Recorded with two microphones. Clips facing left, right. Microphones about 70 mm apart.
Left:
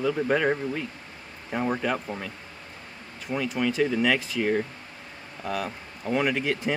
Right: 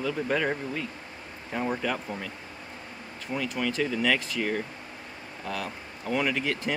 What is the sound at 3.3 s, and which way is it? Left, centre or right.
Speech, centre.